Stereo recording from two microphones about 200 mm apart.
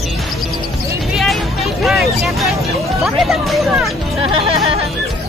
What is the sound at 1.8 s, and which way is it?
Speech, centre (ahead or behind).